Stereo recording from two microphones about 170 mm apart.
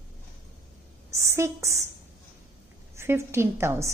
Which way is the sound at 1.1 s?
15° right (ahead or behind).